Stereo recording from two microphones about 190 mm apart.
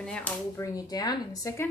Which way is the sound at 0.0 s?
5° left (ahead or behind).